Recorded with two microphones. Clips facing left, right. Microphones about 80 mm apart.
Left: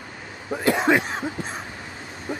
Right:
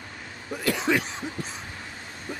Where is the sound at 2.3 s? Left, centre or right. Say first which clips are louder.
Left 6 dB; centre.